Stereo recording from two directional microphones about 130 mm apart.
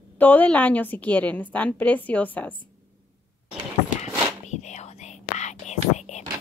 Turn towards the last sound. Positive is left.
turn(degrees=65)  # may be behind; listen again after turning